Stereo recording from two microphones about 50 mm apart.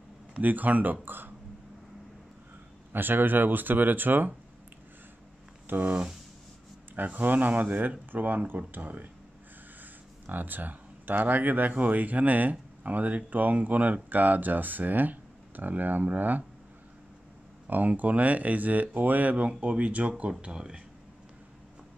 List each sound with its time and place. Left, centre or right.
0.3 s speech: right
1.0 s a sound: right
2.9 s speech: right
5.7 s speech: right
10.2 s speech: right
17.6 s speech: right; by 20.8 s centre